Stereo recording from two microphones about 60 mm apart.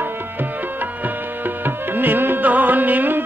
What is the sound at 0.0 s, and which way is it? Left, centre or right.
Music, right.